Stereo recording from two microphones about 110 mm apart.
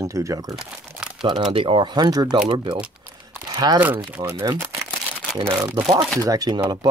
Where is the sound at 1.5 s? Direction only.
50° right (ahead or behind); by 5.9 s 20° right (ahead or behind).